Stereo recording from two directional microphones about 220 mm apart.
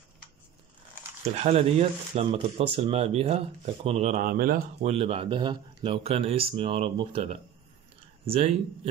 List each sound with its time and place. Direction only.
1.2 s speech: 30° right (ahead or behind)
4.9 s speech: 25° right (ahead or behind)